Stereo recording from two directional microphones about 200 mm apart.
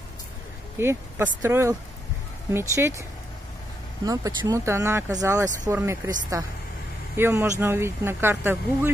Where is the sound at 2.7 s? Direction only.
15° right (ahead or behind).